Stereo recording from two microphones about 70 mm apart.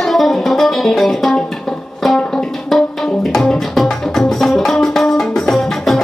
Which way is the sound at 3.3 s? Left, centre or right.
Centre.